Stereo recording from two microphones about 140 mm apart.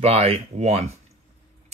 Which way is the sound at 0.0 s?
45° right (ahead or behind).